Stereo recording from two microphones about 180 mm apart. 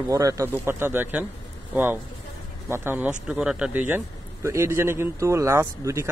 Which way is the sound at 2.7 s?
10° right (ahead or behind).